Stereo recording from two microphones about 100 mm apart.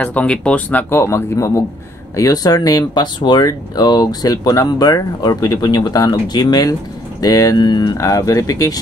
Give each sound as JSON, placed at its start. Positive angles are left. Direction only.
{"t": 0.0, "sound": "speech", "side_deg": 15}
{"t": 0.8, "sound": "speech", "side_deg": 25}